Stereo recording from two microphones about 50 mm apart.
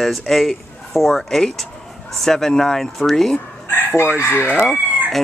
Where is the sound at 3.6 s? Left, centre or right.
Left.